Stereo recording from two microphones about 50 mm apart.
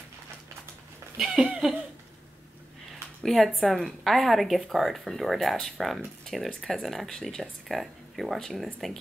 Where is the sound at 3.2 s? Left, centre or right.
Centre.